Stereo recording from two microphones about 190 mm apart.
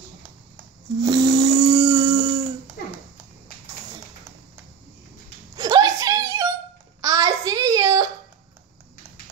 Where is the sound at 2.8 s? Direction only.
50° left (ahead or behind).